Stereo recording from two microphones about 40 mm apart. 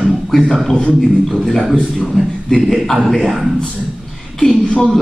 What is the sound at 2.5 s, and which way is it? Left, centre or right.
A man's voice, centre.